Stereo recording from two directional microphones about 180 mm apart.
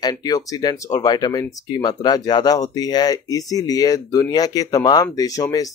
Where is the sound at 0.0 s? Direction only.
20° left (ahead or behind).